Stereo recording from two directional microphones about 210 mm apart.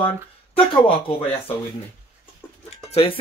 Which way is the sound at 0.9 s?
25° left (ahead or behind).